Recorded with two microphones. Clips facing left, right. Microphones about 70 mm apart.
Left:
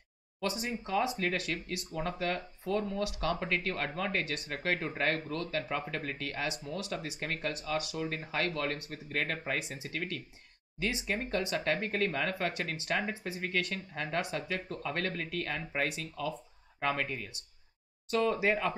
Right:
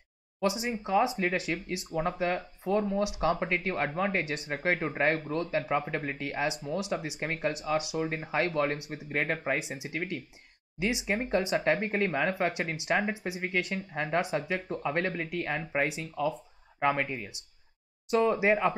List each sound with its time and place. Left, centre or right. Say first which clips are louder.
0.4 s speech: right 5 dB; centre